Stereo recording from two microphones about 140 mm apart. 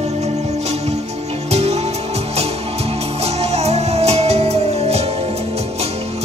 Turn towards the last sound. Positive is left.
turn(degrees=-50)  # may be behind; listen again after turning